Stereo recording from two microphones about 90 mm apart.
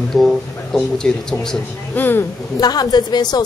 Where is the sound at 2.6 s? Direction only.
50° left (ahead or behind).